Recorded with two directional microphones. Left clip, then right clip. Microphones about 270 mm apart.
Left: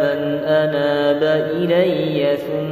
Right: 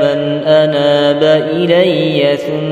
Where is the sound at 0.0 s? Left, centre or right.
Right.